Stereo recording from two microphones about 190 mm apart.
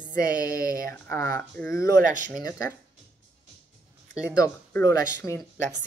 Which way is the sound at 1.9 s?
45° right (ahead or behind).